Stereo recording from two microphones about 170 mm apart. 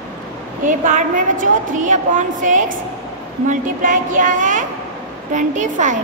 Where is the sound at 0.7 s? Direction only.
50° right (ahead or behind).